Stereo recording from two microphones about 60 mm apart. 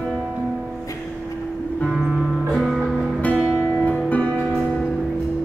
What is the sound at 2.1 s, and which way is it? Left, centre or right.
Music, centre.